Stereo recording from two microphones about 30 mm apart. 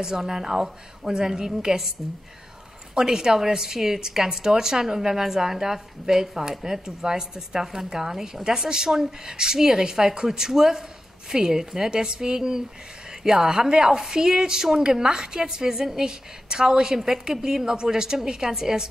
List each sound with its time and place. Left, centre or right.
0.0 s speech: centre
3.0 s a woman's voice: centre